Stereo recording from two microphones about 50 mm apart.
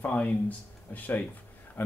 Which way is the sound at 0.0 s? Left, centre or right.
Left.